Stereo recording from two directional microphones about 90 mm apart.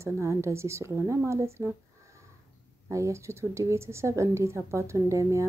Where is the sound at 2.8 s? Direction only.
35° right (ahead or behind).